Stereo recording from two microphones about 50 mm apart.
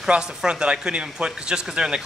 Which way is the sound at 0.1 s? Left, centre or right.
Centre.